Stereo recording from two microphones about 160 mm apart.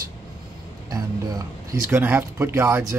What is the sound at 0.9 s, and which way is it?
Speech, 20° right (ahead or behind).